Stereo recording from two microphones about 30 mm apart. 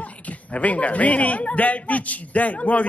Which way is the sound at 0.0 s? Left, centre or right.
Left.